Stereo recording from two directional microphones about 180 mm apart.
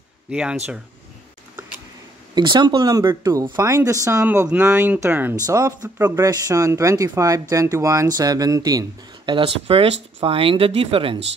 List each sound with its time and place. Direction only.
0.3 s speech: 5° right (ahead or behind)
2.3 s speech: 25° right (ahead or behind)